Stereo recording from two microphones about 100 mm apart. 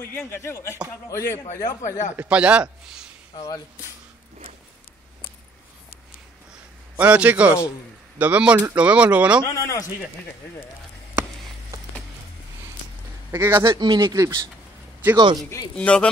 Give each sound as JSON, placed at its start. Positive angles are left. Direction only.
{"t": 0.3, "sound": "a man's voice", "side_deg": 25}
{"t": 1.4, "sound": "a man's voice", "side_deg": 40}
{"t": 2.1, "sound": "speech", "side_deg": -10}
{"t": 7.0, "sound": "speech", "side_deg": -15}
{"t": 9.4, "sound": "a man's voice", "side_deg": 30}
{"t": 13.3, "sound": "a man's voice", "side_deg": -25}
{"t": 13.7, "sound": "speech", "side_deg": -45}
{"t": 14.1, "sound": "speech", "side_deg": -35}
{"t": 15.1, "sound": "speech", "side_deg": -50}
{"t": 15.7, "sound": "speech", "side_deg": 10}